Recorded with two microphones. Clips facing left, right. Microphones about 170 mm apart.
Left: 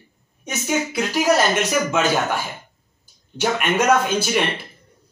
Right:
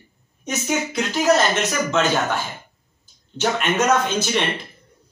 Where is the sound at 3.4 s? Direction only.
10° left (ahead or behind).